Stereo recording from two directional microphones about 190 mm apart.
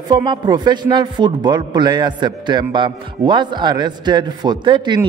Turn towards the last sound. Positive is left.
turn(degrees=-25)  # may be behind; listen again after turning